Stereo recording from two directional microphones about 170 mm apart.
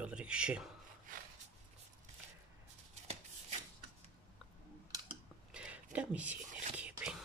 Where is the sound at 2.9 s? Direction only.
35° right (ahead or behind).